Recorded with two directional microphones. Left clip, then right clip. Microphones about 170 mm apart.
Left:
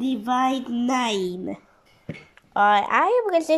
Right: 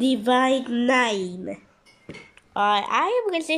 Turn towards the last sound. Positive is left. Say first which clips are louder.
# left 3 dB
turn(degrees=0)  # may be behind; listen again after turning